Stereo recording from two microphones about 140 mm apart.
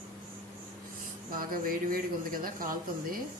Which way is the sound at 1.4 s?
90° right.